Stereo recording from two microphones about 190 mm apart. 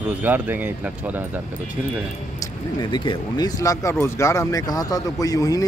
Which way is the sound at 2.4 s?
20° left (ahead or behind).